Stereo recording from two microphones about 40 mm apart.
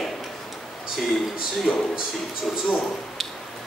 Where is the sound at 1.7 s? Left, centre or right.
Centre.